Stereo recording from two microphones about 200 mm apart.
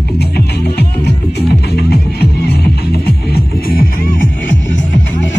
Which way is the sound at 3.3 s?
45° left (ahead or behind).